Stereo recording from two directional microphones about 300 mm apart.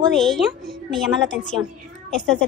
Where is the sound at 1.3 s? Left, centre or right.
Left.